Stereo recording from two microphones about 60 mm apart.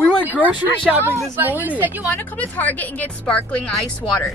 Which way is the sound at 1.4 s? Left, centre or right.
Right.